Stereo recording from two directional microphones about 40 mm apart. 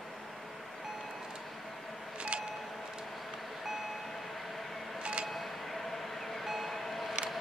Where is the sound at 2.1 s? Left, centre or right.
Right.